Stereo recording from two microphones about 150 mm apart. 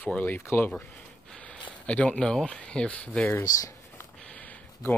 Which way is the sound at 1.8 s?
10° left (ahead or behind).